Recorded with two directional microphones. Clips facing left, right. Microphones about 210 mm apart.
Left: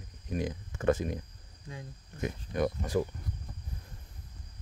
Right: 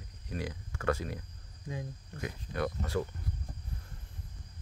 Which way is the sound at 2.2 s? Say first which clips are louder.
Left 4 dB; 20° left (ahead or behind).